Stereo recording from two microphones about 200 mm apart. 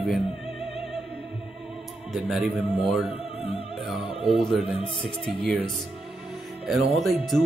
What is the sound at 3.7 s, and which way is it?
Opera, centre (ahead or behind).